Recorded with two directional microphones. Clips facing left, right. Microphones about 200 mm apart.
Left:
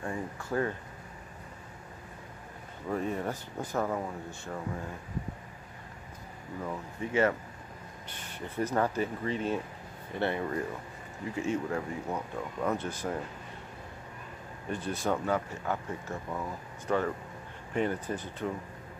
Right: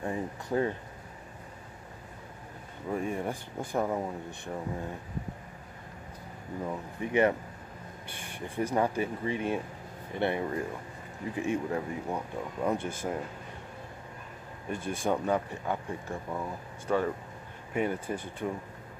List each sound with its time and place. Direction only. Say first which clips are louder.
0.0 s speech: right 2 dB; 20° right (ahead or behind)
2.9 s speech: even; 10° right (ahead or behind)
6.6 s speech: right 1 dB; 15° right (ahead or behind)
15.0 s speech: right 2 dB; 15° right (ahead or behind)